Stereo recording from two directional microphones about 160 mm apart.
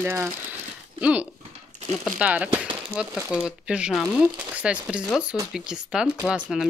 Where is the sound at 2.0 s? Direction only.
10° right (ahead or behind).